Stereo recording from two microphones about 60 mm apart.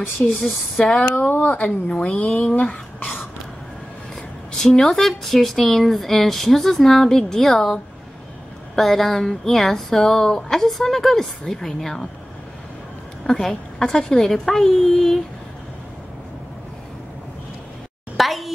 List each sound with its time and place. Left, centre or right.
0.2 s speech: centre
1.0 s speech: left
4.5 s speech: centre
13.3 s speech: centre
18.1 s a woman's voice: centre